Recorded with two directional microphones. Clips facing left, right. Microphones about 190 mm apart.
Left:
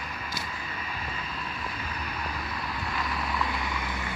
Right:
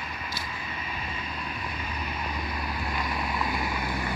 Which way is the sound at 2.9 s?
25° right (ahead or behind).